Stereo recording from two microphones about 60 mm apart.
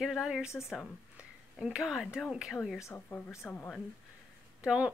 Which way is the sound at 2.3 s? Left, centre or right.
Centre.